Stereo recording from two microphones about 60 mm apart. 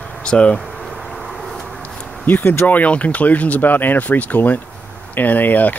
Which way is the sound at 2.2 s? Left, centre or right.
Left.